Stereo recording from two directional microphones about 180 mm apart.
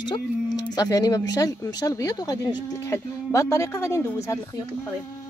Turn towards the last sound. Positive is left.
turn(degrees=15)  # may be behind; listen again after turning